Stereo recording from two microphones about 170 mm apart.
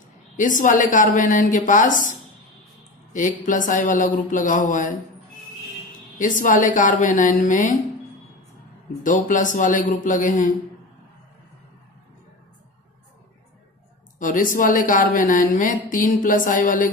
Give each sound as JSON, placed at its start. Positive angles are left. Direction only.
{"t": 0.4, "sound": "a woman's voice", "side_deg": 50}
{"t": 6.1, "sound": "a woman's voice", "side_deg": 50}
{"t": 9.0, "sound": "a woman's voice", "side_deg": 50}
{"t": 14.1, "sound": "a woman's voice", "side_deg": 50}